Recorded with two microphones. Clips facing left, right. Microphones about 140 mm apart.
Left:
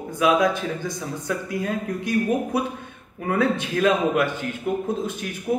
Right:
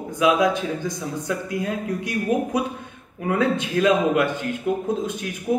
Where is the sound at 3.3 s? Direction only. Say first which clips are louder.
Right 1 dB; 15° right (ahead or behind).